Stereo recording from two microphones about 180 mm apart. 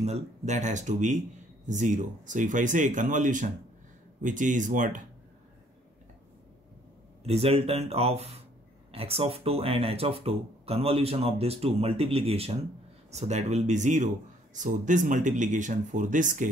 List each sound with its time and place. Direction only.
0.0 s speech: 40° right (ahead or behind)
7.2 s speech: 35° right (ahead or behind)